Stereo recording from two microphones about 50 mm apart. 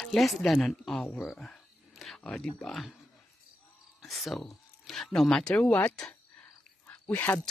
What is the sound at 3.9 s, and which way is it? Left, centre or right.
Speech, centre.